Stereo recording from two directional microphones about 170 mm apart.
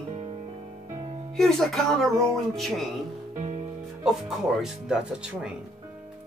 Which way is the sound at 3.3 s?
45° right (ahead or behind).